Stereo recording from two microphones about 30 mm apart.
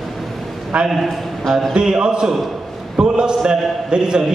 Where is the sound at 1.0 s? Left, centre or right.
Centre.